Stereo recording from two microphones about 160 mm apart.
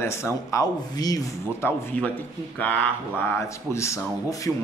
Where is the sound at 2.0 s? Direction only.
10° left (ahead or behind).